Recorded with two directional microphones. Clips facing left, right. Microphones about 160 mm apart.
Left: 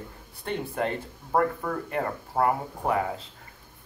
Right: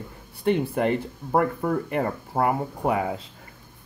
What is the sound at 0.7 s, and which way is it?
Speech, 10° right (ahead or behind).